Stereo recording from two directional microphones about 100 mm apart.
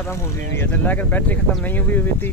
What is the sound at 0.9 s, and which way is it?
Speech, 15° left (ahead or behind).